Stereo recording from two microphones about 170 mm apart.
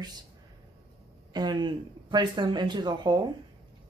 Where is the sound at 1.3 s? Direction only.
25° right (ahead or behind).